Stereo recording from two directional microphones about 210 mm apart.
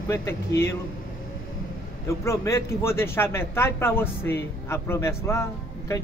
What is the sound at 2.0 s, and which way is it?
Speech, 15° left (ahead or behind).